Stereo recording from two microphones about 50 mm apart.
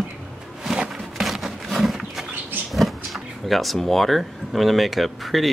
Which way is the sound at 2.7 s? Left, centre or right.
Centre.